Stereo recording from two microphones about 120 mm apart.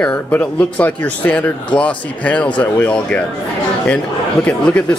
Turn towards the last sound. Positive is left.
turn(degrees=10)  # may be behind; listen again after turning